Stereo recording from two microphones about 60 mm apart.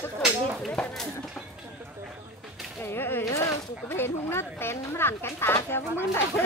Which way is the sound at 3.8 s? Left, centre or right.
Left.